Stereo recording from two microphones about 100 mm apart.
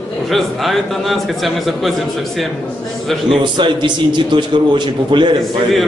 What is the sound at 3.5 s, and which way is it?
A man's voice, 50° right (ahead or behind).